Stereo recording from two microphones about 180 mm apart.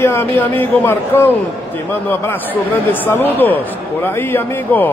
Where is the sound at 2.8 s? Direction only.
10° left (ahead or behind).